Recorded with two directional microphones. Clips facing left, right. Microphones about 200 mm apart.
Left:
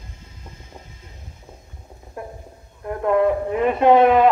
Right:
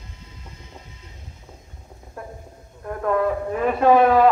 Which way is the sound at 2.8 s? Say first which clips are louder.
Left 3 dB; 15° left (ahead or behind).